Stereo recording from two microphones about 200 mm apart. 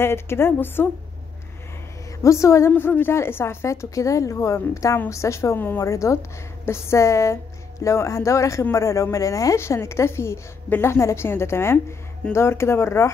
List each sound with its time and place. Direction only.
0.0 s speech: 10° left (ahead or behind)
2.2 s speech: 15° left (ahead or behind)